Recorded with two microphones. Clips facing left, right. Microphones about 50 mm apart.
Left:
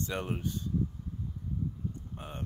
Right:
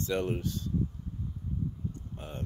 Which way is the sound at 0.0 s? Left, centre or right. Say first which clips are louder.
Right 4 dB; centre.